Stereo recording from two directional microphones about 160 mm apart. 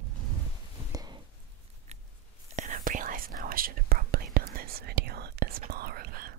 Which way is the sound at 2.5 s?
50° right (ahead or behind).